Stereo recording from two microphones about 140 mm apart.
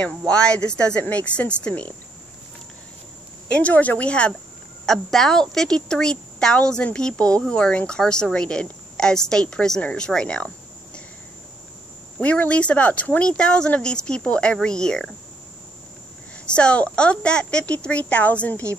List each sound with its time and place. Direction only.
0.3 s speech: 5° left (ahead or behind)
3.5 s a woman's voice: 10° left (ahead or behind)
12.2 s speech: 10° left (ahead or behind)
16.5 s speech: 10° left (ahead or behind)